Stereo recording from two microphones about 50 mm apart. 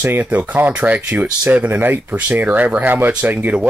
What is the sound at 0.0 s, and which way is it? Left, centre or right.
Speech, right.